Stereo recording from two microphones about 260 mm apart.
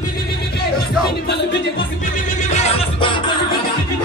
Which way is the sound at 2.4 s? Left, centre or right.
Left.